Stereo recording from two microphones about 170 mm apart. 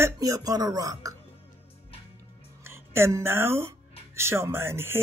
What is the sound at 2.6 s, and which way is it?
Speech, 15° right (ahead or behind).